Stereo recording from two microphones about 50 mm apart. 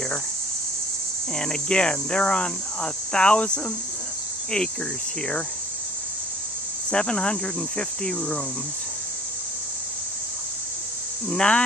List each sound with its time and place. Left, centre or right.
1.3 s speech: centre
6.9 s speech: centre
11.2 s speech: centre